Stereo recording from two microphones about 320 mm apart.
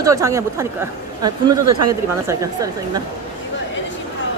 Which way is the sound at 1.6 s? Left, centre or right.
Right.